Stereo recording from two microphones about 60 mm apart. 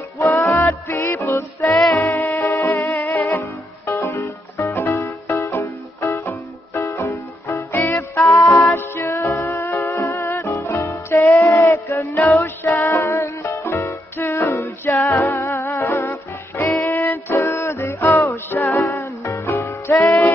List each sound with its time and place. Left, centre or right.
0.2 s music: left
2.0 s music: left
3.2 s music: left
8.2 s music: left
8.7 s music: left
10.3 s music: left
14.5 s a capella: left
15.1 s music: left
19.2 s music: left